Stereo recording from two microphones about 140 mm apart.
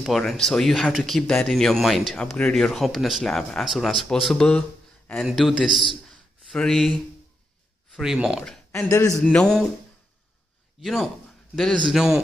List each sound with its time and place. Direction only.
0.0 s speech: centre (ahead or behind)
8.7 s a man's voice: 20° left (ahead or behind)
9.2 s speech: 5° left (ahead or behind)
10.8 s speech: centre (ahead or behind)